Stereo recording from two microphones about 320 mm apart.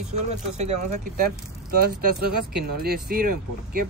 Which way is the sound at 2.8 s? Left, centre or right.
Right.